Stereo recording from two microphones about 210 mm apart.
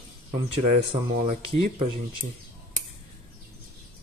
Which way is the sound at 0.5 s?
30° right (ahead or behind).